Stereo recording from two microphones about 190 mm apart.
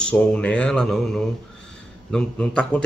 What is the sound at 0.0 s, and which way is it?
Speech, 5° left (ahead or behind).